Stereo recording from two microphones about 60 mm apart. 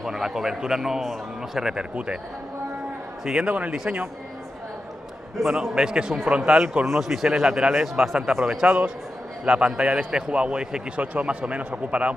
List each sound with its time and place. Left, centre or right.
0.0 s speech: centre
3.4 s speech: right
5.5 s speech: centre
6.9 s speech: centre
8.6 s speech: right
9.4 s speech: centre